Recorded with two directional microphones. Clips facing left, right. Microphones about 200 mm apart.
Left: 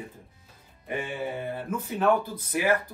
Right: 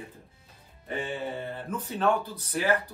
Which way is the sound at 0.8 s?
10° left (ahead or behind).